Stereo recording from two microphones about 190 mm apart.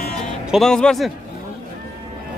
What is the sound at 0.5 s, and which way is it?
Speech, 5° left (ahead or behind).